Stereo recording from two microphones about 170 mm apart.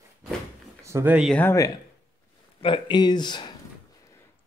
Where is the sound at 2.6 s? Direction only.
30° left (ahead or behind).